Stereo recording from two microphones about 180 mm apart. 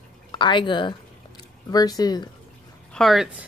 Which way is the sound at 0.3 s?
25° left (ahead or behind).